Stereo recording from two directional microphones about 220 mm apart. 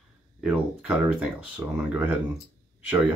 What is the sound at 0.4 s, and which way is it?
Speech, 5° right (ahead or behind).